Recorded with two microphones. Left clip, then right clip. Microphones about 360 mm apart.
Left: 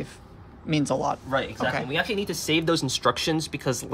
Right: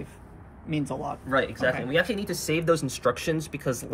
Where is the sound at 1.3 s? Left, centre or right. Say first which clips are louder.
Right 1 dB; centre.